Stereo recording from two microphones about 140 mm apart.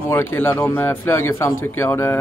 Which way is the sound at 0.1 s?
15° left (ahead or behind).